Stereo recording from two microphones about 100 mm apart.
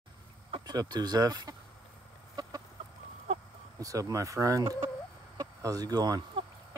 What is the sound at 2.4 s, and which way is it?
Chicken, 40° right (ahead or behind).